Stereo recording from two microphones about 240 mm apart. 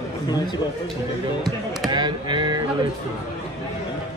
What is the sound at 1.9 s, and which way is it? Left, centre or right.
Speech, centre.